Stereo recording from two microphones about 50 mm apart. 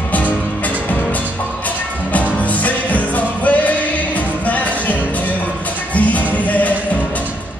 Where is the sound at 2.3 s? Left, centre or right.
Left.